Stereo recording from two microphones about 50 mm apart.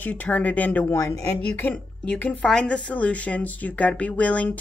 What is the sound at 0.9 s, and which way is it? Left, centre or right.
Speech, left.